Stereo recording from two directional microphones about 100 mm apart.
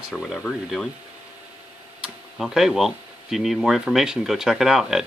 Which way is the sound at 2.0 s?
5° right (ahead or behind).